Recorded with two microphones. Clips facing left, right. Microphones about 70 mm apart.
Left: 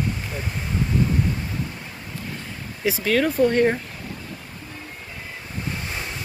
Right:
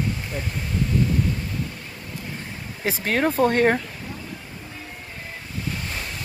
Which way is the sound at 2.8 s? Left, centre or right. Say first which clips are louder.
Left 2 dB; right.